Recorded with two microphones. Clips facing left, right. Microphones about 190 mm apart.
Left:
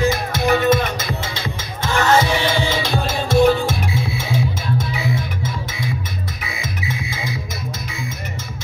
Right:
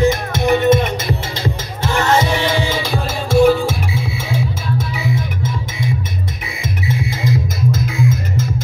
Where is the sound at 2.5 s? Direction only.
15° right (ahead or behind).